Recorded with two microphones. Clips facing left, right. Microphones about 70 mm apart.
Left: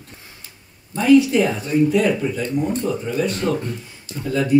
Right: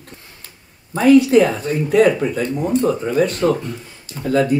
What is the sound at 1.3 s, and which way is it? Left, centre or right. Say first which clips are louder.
Speech: right 4 dB; right.